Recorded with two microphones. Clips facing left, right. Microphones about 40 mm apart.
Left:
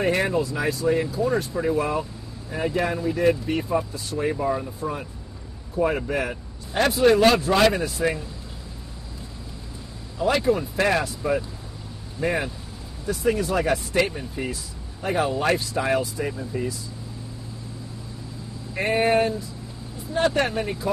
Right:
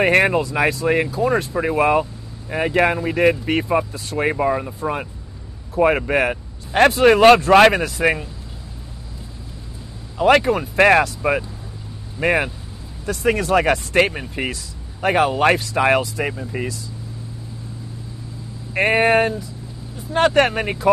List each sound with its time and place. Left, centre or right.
0.0 s speech: right
10.1 s speech: right
13.0 s speech: right
18.7 s speech: right